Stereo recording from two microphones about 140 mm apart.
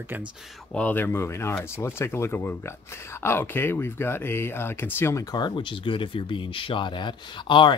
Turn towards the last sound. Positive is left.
turn(degrees=35)  # may be behind; listen again after turning